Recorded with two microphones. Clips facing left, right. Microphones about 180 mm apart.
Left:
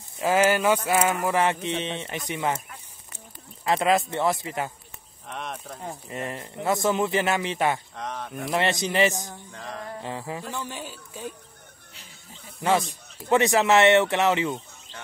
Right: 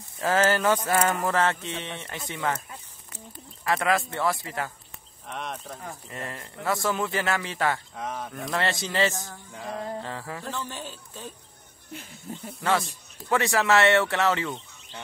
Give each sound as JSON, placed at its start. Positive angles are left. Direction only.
{"t": 0.2, "sound": "speech", "side_deg": 15}
{"t": 3.6, "sound": "speech", "side_deg": 20}
{"t": 5.3, "sound": "speech", "side_deg": 0}
{"t": 5.8, "sound": "speech", "side_deg": 20}
{"t": 7.9, "sound": "speech", "side_deg": -5}
{"t": 8.3, "sound": "speech", "side_deg": 20}
{"t": 9.5, "sound": "music", "side_deg": -5}
{"t": 10.0, "sound": "speech", "side_deg": 15}
{"t": 11.9, "sound": "speech", "side_deg": -50}
{"t": 13.3, "sound": "speech", "side_deg": 20}